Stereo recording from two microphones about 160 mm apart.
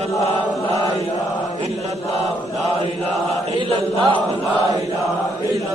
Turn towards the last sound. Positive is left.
turn(degrees=-35)  # may be behind; listen again after turning